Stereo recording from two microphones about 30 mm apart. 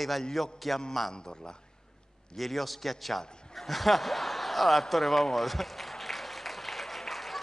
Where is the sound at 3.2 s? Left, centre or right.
Left.